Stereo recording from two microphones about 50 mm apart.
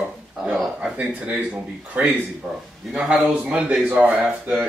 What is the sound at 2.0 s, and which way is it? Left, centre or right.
Speech, right.